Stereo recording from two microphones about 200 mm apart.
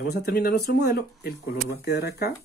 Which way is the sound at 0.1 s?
50° left (ahead or behind).